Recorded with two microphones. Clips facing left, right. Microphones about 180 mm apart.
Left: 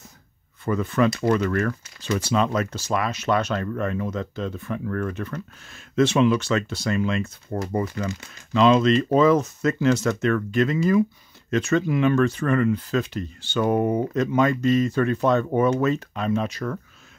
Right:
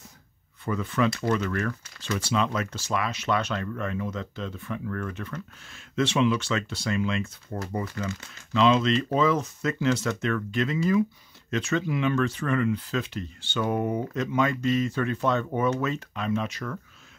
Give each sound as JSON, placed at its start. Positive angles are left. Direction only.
{"t": 0.7, "sound": "speech", "side_deg": 45}
{"t": 8.0, "sound": "speech", "side_deg": 25}
{"t": 8.5, "sound": "speech", "side_deg": 45}